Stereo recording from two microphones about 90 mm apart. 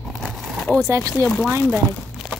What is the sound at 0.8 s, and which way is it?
Speech, 35° right (ahead or behind).